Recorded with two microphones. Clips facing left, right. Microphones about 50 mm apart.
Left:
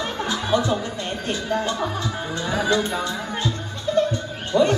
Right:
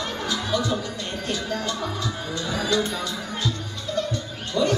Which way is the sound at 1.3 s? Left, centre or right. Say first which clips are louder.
Left 4 dB; left.